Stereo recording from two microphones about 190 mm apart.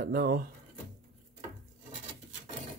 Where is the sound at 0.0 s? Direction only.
50° right (ahead or behind).